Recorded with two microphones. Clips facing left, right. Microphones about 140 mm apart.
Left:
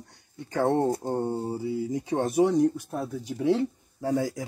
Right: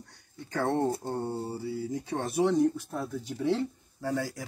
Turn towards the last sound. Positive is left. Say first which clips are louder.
# left 5 dB
turn(degrees=20)  # may be behind; listen again after turning